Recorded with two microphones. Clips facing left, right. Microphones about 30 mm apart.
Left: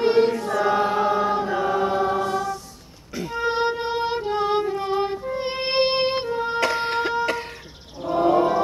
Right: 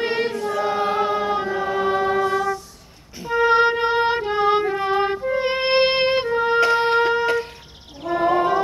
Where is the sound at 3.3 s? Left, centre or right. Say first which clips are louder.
Right 7 dB; right.